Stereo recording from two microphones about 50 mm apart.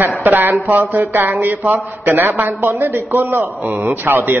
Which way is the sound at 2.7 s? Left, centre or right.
Right.